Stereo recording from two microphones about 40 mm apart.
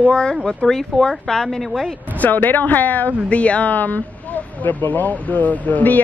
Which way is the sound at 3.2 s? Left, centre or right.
Left.